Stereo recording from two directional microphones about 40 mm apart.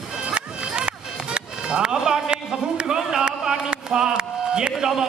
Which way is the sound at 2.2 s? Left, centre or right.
Right.